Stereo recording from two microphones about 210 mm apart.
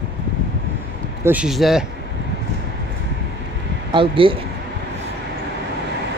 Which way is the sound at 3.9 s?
25° right (ahead or behind).